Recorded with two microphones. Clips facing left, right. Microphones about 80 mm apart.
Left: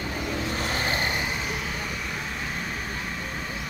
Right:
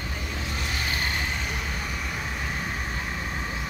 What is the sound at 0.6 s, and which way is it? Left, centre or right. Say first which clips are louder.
Vehicle: left 2 dB; left.